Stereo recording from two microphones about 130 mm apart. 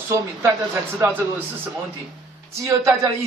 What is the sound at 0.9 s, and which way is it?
A man's voice, 15° right (ahead or behind).